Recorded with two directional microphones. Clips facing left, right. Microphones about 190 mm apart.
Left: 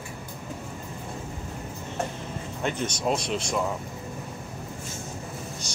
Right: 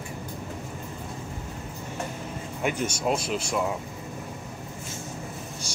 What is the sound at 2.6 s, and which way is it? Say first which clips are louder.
Speech: right 1 dB; 10° right (ahead or behind).